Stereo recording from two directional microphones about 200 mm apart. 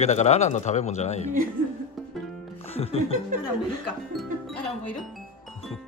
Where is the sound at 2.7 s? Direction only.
30° left (ahead or behind).